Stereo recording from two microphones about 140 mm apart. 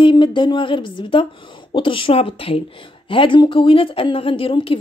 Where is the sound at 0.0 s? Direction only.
35° left (ahead or behind).